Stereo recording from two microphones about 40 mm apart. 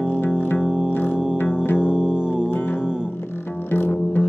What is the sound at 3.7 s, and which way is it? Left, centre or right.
Music, left.